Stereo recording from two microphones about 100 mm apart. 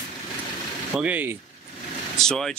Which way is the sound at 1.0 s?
20° right (ahead or behind).